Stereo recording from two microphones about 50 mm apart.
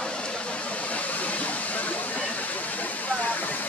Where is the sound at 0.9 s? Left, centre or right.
Left.